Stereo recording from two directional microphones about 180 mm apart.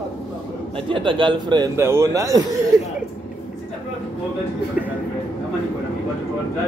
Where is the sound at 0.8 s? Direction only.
30° right (ahead or behind).